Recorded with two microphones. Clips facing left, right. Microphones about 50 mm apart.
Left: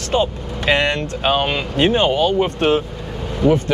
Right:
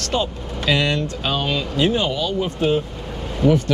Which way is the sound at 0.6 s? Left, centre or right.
Left.